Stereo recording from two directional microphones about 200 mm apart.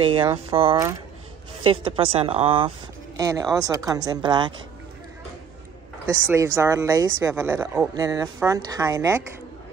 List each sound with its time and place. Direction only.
0.0 s speech: 25° right (ahead or behind)
3.2 s speech: 15° right (ahead or behind)
6.2 s speech: 15° right (ahead or behind)